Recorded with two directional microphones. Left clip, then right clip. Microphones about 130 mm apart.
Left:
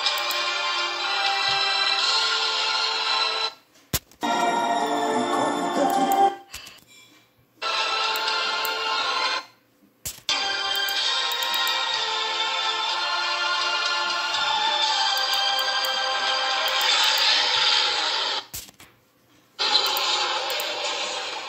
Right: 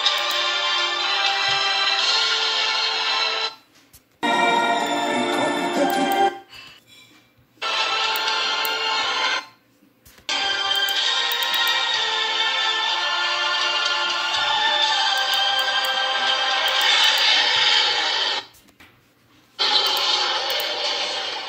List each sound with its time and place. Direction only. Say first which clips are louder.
0.0 s music: right 4 dB; 10° right (ahead or behind)
4.8 s music: right 2 dB; 25° right (ahead or behind)
7.6 s music: right 2 dB; 15° right (ahead or behind)
19.5 s a sound: right 3 dB; 10° right (ahead or behind)